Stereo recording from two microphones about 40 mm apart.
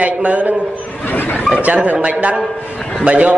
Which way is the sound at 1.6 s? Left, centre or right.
Right.